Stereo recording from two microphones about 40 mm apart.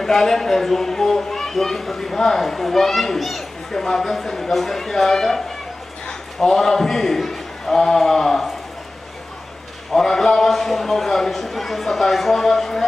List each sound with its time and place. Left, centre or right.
0.0 s speech: centre
3.7 s a man's voice: centre
9.9 s a man's voice: centre